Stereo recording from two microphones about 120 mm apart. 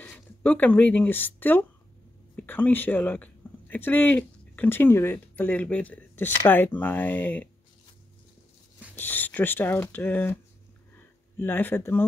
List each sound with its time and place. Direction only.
0.0 s speech: 10° left (ahead or behind)
8.9 s speech: 15° left (ahead or behind)